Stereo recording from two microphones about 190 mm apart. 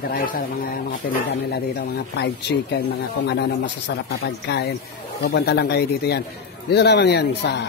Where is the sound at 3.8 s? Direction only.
60° left (ahead or behind).